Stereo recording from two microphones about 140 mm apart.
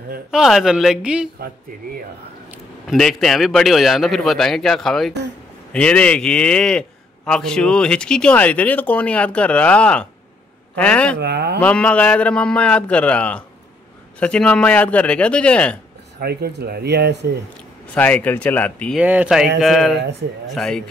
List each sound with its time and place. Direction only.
0.3 s a man's voice: 5° right (ahead or behind)
2.9 s a man's voice: 5° left (ahead or behind)
16.2 s speech: 90° right
17.9 s a man's voice: 10° left (ahead or behind)
18.9 s a man's voice: 10° right (ahead or behind)